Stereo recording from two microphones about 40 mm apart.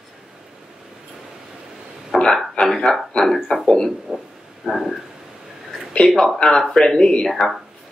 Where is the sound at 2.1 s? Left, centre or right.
Centre.